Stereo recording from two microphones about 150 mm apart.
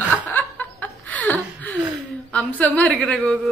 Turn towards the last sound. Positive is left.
turn(degrees=10)  # may be behind; listen again after turning